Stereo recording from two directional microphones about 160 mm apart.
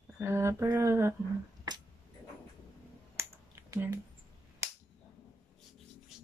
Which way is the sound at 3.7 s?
15° right (ahead or behind).